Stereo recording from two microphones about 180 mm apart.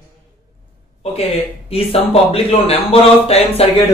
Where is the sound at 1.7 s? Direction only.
35° left (ahead or behind).